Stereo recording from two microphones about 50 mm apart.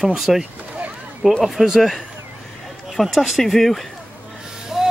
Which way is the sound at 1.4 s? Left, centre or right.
Centre.